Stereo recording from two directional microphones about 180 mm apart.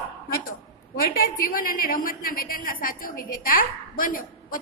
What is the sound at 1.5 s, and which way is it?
Speech, 50° left (ahead or behind).